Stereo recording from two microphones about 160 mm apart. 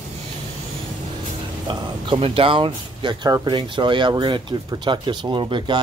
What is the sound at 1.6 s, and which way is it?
Speech, 30° right (ahead or behind).